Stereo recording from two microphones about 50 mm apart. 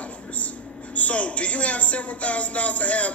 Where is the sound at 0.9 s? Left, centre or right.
Left.